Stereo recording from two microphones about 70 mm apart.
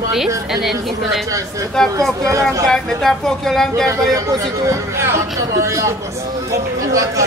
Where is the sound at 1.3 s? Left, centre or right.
Right.